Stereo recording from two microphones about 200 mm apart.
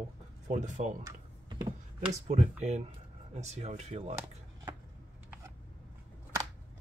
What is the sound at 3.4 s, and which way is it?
Speech, 35° right (ahead or behind).